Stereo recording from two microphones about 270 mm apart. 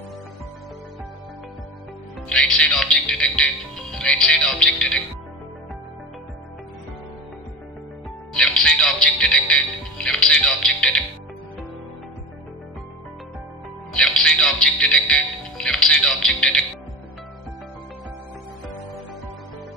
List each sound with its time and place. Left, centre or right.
2.2 s speech: centre
8.3 s music: centre
13.9 s music: centre